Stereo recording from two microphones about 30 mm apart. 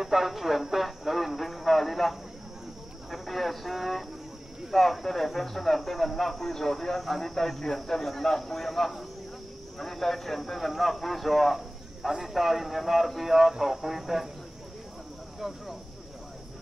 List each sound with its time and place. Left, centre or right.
0.0 s a man's voice: centre